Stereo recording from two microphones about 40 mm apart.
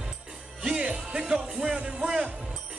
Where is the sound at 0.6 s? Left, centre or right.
Right.